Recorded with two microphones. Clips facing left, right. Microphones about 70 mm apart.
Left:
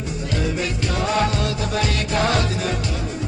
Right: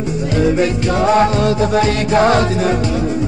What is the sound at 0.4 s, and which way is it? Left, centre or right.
Music, right.